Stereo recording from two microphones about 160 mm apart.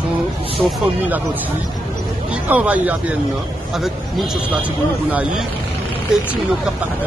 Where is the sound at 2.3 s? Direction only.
10° right (ahead or behind).